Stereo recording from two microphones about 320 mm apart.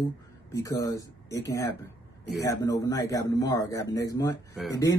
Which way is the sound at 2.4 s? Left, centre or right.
Centre.